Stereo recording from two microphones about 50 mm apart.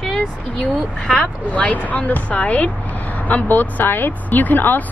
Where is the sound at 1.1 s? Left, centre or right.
Centre.